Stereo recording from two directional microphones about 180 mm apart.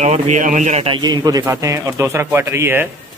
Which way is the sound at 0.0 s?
45° right (ahead or behind).